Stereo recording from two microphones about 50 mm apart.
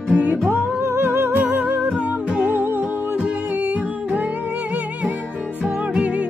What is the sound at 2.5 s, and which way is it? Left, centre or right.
Music, right.